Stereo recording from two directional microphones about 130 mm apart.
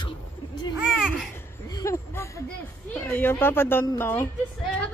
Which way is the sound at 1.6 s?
25° left (ahead or behind).